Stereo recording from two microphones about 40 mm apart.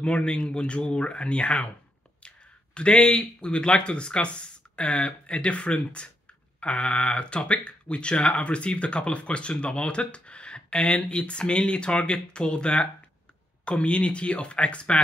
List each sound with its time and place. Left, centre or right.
0.0 s speech: left
2.2 s a sound: left
2.9 s speech: centre
3.2 s speech: left